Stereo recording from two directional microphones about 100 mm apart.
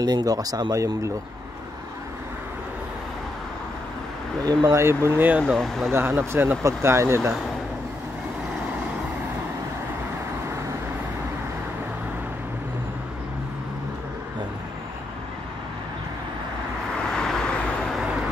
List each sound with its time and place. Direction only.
0.0 s speech: 40° right (ahead or behind)
4.5 s speech: 30° right (ahead or behind)
5.5 s speech: centre (ahead or behind)
5.9 s speech: 25° right (ahead or behind)
17.1 s vehicle: 5° left (ahead or behind)